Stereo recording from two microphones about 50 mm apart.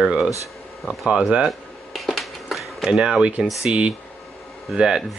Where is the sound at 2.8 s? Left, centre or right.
Centre.